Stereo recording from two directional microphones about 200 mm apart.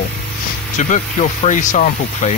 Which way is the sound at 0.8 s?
35° left (ahead or behind).